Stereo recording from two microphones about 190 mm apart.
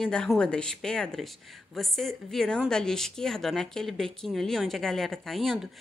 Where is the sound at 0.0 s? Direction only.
5° left (ahead or behind).